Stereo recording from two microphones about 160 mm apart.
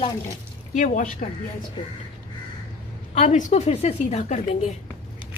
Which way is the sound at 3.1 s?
50° left (ahead or behind).